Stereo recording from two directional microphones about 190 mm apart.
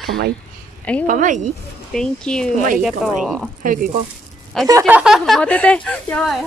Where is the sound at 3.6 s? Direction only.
45° right (ahead or behind).